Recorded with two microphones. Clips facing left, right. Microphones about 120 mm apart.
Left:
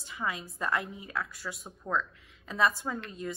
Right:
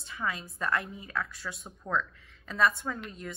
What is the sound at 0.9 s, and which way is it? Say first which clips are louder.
Speech: right 1 dB; 5° left (ahead or behind).